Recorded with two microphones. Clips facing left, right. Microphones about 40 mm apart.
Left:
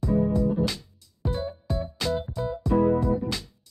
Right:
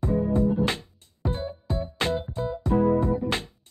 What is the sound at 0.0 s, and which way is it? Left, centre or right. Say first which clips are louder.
Music: even; right.